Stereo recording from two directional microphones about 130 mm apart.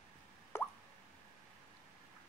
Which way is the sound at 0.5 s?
20° left (ahead or behind).